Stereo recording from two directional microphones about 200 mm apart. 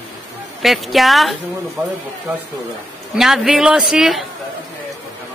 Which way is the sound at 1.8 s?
15° right (ahead or behind).